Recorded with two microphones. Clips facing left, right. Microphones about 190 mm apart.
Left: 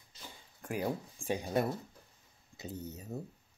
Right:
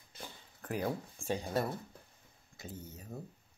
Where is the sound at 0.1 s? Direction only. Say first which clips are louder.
Right 4 dB; 55° right (ahead or behind).